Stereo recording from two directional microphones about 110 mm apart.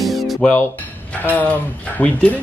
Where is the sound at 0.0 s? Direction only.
Centre (ahead or behind).